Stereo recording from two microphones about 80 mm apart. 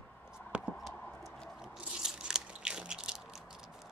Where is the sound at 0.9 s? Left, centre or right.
Centre.